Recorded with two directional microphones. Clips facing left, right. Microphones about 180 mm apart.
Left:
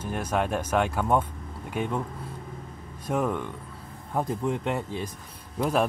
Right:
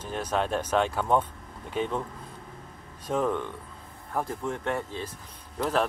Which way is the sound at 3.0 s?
10° left (ahead or behind).